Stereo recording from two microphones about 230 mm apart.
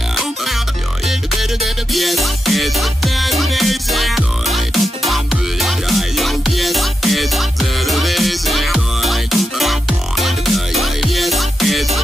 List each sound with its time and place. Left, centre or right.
0.1 s music: centre